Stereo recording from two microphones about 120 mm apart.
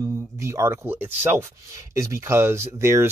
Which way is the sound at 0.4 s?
25° right (ahead or behind).